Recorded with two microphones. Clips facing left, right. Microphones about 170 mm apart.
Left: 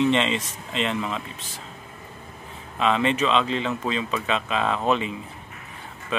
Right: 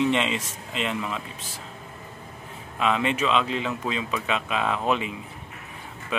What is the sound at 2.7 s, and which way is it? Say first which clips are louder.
Speech: left 2 dB; 10° right (ahead or behind).